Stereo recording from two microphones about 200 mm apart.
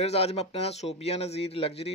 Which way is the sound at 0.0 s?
30° left (ahead or behind).